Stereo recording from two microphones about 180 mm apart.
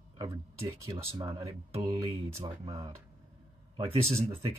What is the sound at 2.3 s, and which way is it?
Speech, 30° right (ahead or behind).